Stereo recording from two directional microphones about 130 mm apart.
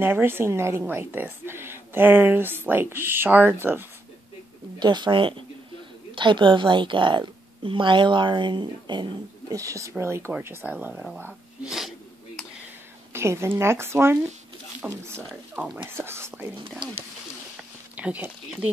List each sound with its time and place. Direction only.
0.0 s a woman's voice: 15° right (ahead or behind)
4.7 s a woman's voice: 35° right (ahead or behind); by 11.7 s 10° right (ahead or behind)
13.1 s a woman's voice: 20° right (ahead or behind)
17.9 s speech: 10° right (ahead or behind)